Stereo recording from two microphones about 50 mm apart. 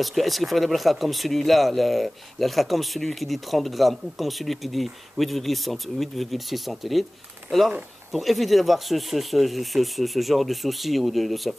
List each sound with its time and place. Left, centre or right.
0.0 s speech: centre
8.1 s speech: centre